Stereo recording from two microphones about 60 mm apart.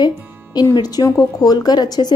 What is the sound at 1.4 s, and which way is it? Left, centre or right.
Speech, left.